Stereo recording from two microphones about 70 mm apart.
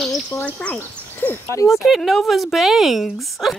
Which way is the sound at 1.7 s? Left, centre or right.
Centre.